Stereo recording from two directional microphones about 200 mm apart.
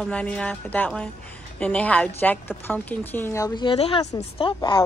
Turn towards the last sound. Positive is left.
turn(degrees=25)  # may be behind; listen again after turning